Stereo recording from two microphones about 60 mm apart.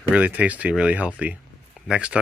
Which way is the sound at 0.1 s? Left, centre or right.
Right.